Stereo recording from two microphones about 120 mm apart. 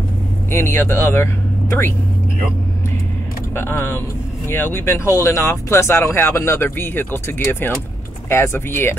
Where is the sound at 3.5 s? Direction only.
20° left (ahead or behind).